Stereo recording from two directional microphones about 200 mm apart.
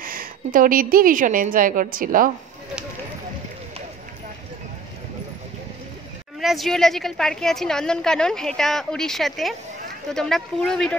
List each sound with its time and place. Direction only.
0.0 s a woman's voice: 45° right (ahead or behind)
6.4 s a woman's voice: centre (ahead or behind)